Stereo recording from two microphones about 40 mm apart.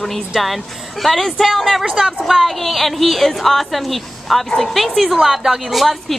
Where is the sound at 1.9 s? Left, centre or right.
Centre.